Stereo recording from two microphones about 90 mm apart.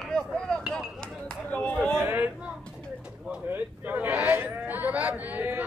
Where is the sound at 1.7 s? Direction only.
5° left (ahead or behind).